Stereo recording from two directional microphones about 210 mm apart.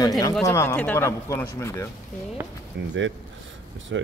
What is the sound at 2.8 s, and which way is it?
Speech, 60° right (ahead or behind).